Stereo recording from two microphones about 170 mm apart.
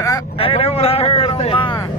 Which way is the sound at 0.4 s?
35° left (ahead or behind).